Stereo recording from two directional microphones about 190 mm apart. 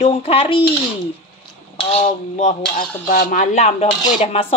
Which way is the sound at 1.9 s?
35° left (ahead or behind).